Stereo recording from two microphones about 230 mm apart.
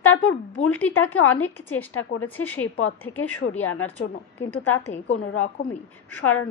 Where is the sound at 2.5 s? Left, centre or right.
Left.